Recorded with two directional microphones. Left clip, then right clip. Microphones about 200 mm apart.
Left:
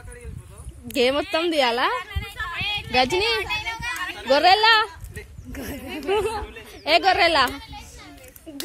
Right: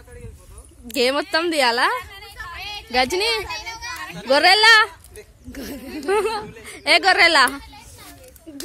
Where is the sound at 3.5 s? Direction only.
20° right (ahead or behind).